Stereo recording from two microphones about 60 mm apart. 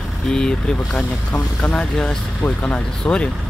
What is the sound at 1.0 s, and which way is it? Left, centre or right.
Speech, centre.